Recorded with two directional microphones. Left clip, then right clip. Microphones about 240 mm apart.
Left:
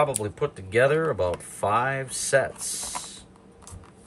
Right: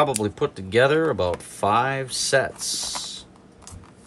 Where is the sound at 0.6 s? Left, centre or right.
Centre.